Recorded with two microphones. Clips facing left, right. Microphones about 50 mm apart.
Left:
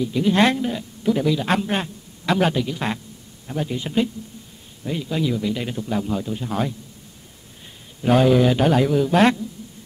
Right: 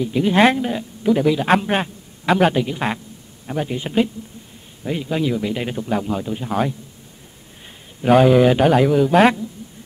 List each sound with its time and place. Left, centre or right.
0.0 s speech: centre
8.1 s a man's voice: centre